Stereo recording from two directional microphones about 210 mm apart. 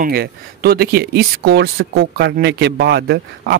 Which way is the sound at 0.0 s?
50° right (ahead or behind).